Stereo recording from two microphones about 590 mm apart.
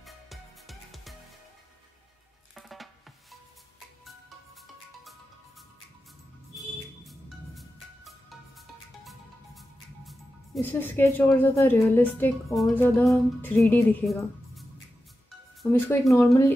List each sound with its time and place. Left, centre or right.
0.0 s music: centre
2.5 s drum: centre
7.1 s music: centre
9.6 s speech: centre
15.9 s speech: centre